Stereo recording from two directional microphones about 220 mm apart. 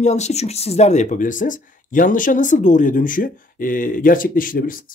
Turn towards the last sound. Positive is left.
turn(degrees=40)  # may be behind; listen again after turning